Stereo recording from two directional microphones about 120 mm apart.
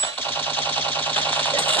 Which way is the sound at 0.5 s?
15° left (ahead or behind).